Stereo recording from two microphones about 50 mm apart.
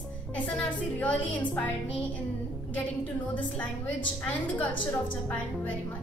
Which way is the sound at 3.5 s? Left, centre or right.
Left.